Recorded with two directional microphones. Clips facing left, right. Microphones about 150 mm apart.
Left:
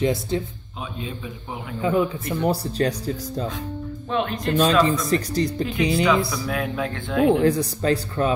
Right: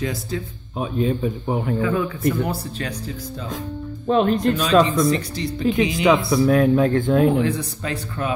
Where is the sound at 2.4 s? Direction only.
35° left (ahead or behind).